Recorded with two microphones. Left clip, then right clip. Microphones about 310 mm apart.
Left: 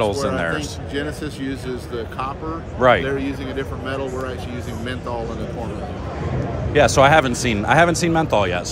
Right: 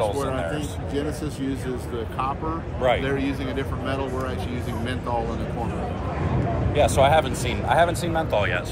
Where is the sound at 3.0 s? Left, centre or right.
Centre.